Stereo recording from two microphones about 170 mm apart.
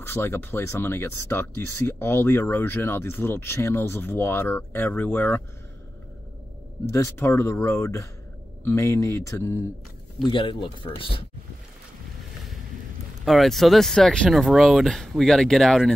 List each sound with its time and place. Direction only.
0.0 s speech: 15° left (ahead or behind)
6.9 s speech: 15° left (ahead or behind)
10.2 s speech: 30° left (ahead or behind)
13.2 s speech: centre (ahead or behind)